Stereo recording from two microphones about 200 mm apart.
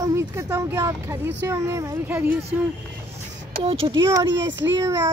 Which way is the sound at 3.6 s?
25° right (ahead or behind).